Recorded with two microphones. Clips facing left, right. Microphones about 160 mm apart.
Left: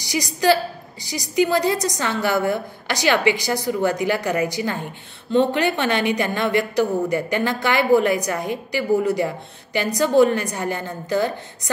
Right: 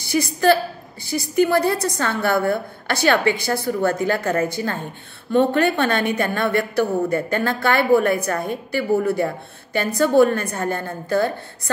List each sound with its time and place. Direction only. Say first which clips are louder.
0.0 s a woman's voice: right 2 dB; 15° left (ahead or behind)